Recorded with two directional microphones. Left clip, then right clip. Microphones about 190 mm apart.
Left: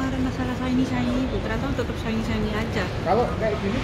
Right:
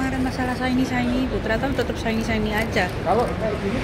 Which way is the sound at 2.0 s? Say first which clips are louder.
Right 4 dB; 20° right (ahead or behind).